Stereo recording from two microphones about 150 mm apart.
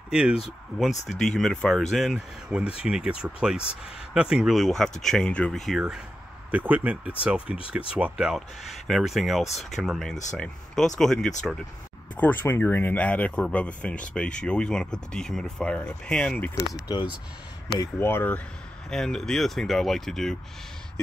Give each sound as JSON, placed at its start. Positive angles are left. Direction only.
{"t": 0.1, "sound": "a man's voice", "side_deg": -5}
{"t": 16.8, "sound": "speech", "side_deg": 30}
{"t": 17.9, "sound": "a man's voice", "side_deg": 15}